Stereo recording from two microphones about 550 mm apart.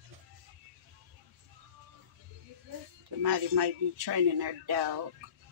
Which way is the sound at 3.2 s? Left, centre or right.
Right.